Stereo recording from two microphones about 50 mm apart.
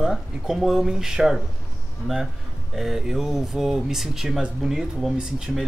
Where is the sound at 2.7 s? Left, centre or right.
Centre.